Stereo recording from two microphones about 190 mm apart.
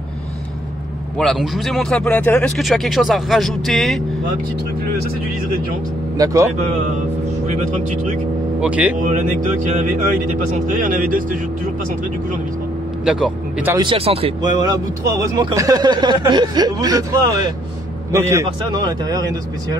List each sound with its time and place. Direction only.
1.1 s a man's voice: 5° left (ahead or behind)
6.1 s speech: 15° right (ahead or behind)
7.4 s speech: 40° right (ahead or behind)
8.5 s speech: 5° right (ahead or behind)
9.0 s speech: 40° right (ahead or behind)
13.0 s speech: 5° right (ahead or behind)
13.7 s speech: 30° right (ahead or behind)
14.4 s speech: 20° right (ahead or behind)